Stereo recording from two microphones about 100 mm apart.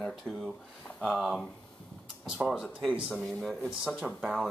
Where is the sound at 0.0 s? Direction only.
Centre (ahead or behind).